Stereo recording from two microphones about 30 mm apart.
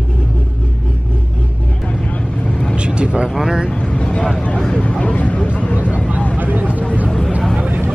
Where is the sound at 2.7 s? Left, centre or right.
Right.